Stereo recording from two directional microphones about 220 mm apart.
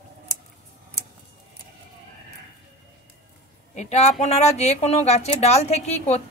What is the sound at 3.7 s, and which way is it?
Speech, 30° left (ahead or behind).